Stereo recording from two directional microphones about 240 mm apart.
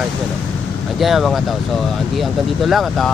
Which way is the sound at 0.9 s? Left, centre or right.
Centre.